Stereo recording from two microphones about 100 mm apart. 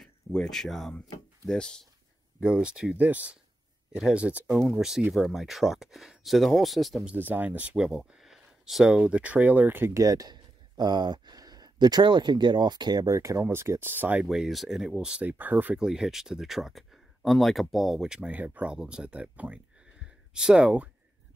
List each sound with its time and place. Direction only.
0.0 s speech: 5° left (ahead or behind)
2.4 s speech: 10° right (ahead or behind)
4.6 s speech: 5° right (ahead or behind)
7.1 s speech: 20° right (ahead or behind)
9.9 s speech: 35° right (ahead or behind)
13.1 s speech: 30° right (ahead or behind)
14.2 s speech: 5° right (ahead or behind)